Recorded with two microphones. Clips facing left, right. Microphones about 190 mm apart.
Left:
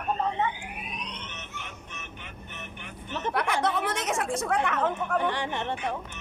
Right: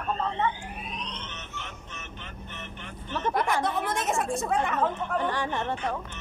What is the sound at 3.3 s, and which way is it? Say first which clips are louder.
A woman's voice: left 1 dB; 70° left (ahead or behind).